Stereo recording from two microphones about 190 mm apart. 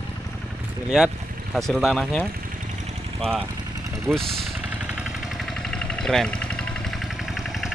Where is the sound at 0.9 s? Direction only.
5° right (ahead or behind).